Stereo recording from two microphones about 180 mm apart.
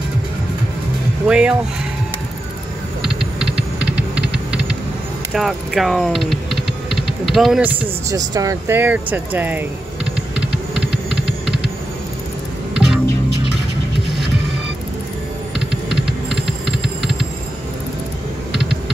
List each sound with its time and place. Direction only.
1.2 s speech: 5° right (ahead or behind)
3.0 s typing: 5° right (ahead or behind)
3.8 s typing: 70° right (ahead or behind)
5.3 s speech: centre (ahead or behind)
8.2 s speech: 20° right (ahead or behind)
10.3 s typing: 5° right (ahead or behind)
12.7 s music: 5° right (ahead or behind)
15.9 s typing: centre (ahead or behind)